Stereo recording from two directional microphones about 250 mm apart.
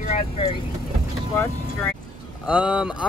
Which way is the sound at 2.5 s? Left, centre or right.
Centre.